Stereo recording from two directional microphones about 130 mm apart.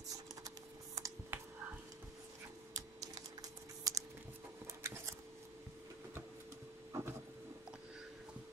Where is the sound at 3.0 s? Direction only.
25° right (ahead or behind).